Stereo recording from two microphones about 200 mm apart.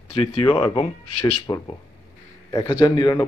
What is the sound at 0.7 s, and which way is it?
A man's voice, 25° left (ahead or behind).